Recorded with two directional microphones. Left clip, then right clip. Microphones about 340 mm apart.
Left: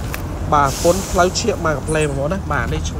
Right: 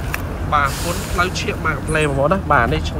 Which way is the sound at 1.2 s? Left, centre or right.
Centre.